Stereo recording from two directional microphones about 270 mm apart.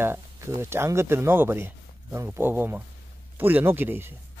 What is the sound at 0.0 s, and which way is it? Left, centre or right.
Speech, centre.